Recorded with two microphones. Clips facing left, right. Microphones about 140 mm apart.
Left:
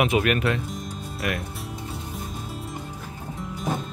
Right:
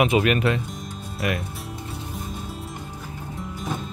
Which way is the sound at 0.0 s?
Centre (ahead or behind).